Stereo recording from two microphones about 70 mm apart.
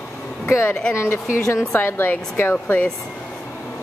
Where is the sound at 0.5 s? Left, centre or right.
Left.